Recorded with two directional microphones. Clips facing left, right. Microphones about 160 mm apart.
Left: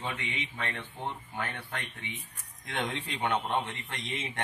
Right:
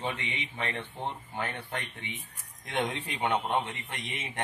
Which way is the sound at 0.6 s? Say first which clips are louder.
Right 2 dB; 20° right (ahead or behind).